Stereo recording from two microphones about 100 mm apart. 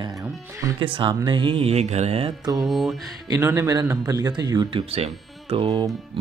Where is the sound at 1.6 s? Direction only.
90° right.